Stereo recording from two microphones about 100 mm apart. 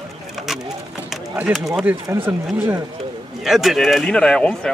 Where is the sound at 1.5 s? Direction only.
Centre (ahead or behind).